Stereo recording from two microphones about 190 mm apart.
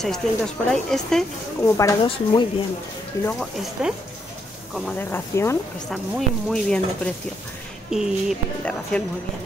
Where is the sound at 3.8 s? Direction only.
5° right (ahead or behind).